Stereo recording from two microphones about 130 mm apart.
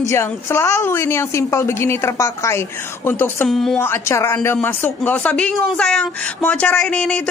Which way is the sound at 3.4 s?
5° left (ahead or behind).